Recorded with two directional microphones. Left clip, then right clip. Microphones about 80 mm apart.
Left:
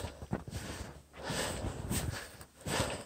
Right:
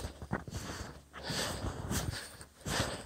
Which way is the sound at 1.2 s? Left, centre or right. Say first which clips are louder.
Even; left.